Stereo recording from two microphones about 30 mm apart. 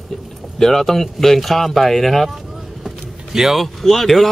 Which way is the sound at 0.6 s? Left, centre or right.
Centre.